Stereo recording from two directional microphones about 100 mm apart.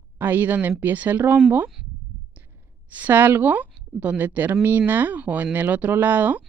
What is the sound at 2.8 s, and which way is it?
Speech, 15° right (ahead or behind).